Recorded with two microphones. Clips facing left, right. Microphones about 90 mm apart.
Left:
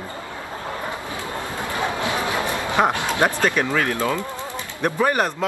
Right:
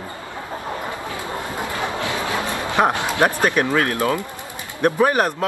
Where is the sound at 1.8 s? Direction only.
20° left (ahead or behind).